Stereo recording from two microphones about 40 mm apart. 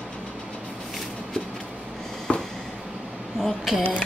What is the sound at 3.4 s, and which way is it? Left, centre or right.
Speech, centre.